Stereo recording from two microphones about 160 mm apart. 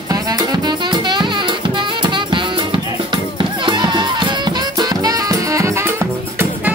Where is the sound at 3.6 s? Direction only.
30° right (ahead or behind).